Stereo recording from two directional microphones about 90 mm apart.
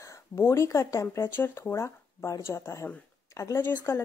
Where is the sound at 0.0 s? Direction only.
30° left (ahead or behind).